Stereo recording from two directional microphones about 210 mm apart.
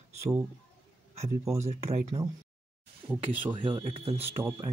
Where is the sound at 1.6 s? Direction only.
30° right (ahead or behind).